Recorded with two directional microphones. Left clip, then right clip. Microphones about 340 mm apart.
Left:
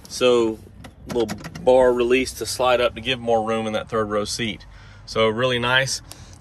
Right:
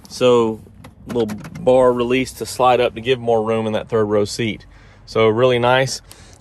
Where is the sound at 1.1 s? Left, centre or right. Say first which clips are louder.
Right 3 dB; right.